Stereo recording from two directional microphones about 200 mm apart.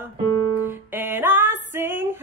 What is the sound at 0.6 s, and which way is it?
Music, 10° right (ahead or behind).